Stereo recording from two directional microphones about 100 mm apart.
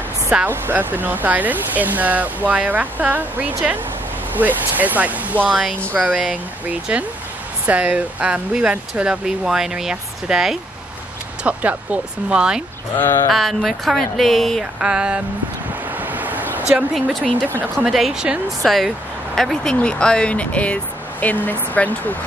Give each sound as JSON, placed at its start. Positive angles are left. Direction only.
{"t": 0.3, "sound": "speech", "side_deg": -15}
{"t": 11.4, "sound": "speech", "side_deg": -15}
{"t": 14.6, "sound": "speech", "side_deg": -10}
{"t": 16.0, "sound": "waves", "side_deg": -15}
{"t": 16.9, "sound": "speech", "side_deg": 0}